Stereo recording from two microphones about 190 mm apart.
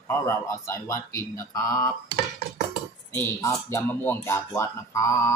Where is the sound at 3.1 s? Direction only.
15° left (ahead or behind).